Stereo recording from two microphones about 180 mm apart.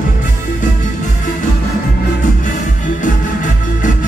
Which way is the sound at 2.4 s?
45° left (ahead or behind).